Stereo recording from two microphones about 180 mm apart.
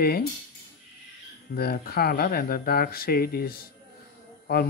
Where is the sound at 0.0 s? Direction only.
55° left (ahead or behind).